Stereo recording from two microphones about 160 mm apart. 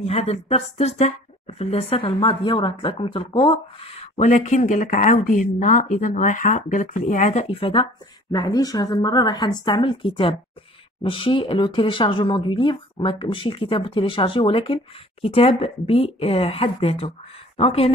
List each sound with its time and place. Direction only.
0.0 s speech: 40° left (ahead or behind)